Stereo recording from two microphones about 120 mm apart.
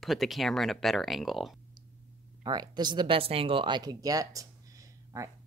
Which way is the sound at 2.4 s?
35° right (ahead or behind).